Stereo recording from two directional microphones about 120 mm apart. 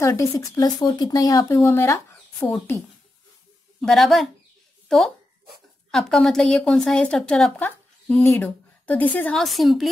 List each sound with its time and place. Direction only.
0.0 s speech: 25° left (ahead or behind)
3.8 s a woman's voice: centre (ahead or behind)
7.6 s a woman's voice: 15° left (ahead or behind)
9.4 s a woman's voice: centre (ahead or behind)